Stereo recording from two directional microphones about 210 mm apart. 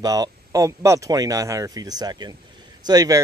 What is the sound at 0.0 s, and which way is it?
Speech, 15° right (ahead or behind).